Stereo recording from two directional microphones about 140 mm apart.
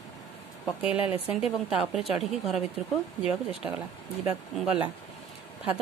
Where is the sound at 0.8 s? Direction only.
10° right (ahead or behind).